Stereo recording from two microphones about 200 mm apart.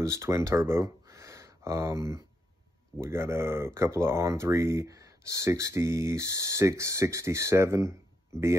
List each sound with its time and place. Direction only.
0.0 s speech: 15° right (ahead or behind)